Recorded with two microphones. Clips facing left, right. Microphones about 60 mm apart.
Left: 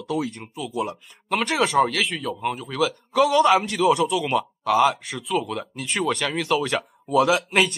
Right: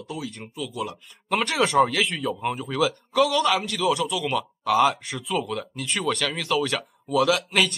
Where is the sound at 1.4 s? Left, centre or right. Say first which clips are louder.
Even; centre.